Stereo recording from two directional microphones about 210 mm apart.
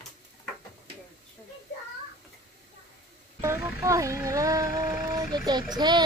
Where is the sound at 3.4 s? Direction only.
15° right (ahead or behind).